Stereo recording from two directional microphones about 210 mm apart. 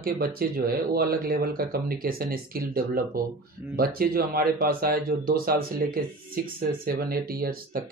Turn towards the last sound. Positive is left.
turn(degrees=-45)  # may be behind; listen again after turning